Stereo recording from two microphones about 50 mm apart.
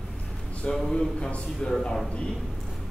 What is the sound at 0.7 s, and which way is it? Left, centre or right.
A man's voice, centre.